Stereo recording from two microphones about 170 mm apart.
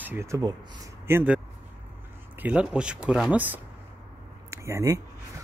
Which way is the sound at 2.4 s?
10° right (ahead or behind).